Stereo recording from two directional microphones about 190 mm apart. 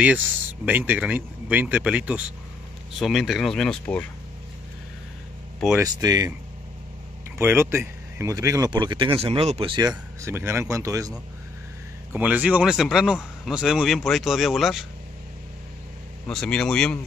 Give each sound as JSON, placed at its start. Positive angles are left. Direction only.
{"t": 0.7, "sound": "speech", "side_deg": -10}
{"t": 5.8, "sound": "speech", "side_deg": -20}
{"t": 7.3, "sound": "speech", "side_deg": -10}
{"t": 16.3, "sound": "speech", "side_deg": 5}